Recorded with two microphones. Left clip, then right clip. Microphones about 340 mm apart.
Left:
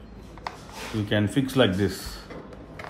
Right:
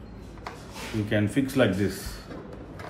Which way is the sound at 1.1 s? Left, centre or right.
Left.